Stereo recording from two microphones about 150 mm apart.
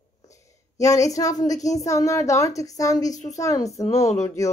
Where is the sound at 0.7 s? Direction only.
20° left (ahead or behind).